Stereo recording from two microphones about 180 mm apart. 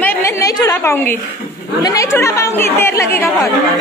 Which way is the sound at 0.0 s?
10° left (ahead or behind).